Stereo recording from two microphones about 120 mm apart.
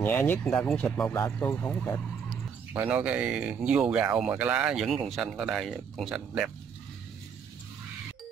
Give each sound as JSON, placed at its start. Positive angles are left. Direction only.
{"t": 0.0, "sound": "speech", "side_deg": 15}
{"t": 2.2, "sound": "speech", "side_deg": -15}